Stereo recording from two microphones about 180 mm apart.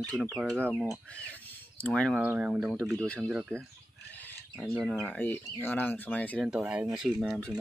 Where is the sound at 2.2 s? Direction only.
5° right (ahead or behind).